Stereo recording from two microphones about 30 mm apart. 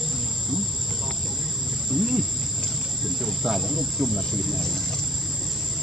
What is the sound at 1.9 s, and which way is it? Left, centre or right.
Cricket, centre.